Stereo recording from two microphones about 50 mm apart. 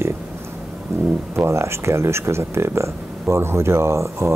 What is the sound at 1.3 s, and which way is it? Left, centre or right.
Speech, right.